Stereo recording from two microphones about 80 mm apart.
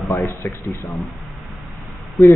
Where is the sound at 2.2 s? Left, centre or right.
Centre.